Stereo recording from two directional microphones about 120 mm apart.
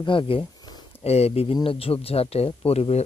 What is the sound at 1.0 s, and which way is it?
Speech, 60° left (ahead or behind).